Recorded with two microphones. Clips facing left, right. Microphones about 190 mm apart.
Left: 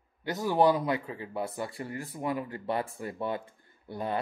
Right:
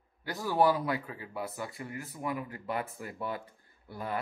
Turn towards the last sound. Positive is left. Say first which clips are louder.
# left 4 dB
turn(degrees=25)  # may be behind; listen again after turning